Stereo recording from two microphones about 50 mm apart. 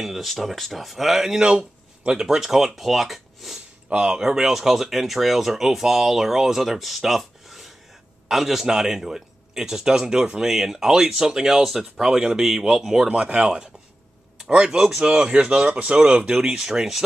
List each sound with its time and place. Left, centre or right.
0.0 s speech: centre
1.4 s speech: centre
4.0 s a man's voice: centre